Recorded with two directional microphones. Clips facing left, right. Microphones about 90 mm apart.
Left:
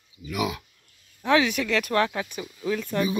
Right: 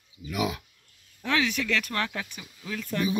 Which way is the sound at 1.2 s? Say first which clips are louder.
Left 5 dB; 15° left (ahead or behind).